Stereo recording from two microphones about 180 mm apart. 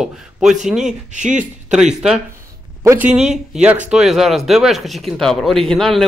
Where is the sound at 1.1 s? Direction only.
45° right (ahead or behind).